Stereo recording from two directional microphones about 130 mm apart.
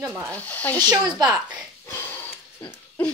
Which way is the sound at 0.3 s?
10° left (ahead or behind).